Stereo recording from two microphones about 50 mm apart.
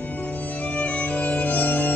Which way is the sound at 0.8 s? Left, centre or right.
Left.